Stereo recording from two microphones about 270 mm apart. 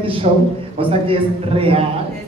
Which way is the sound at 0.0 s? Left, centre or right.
Right.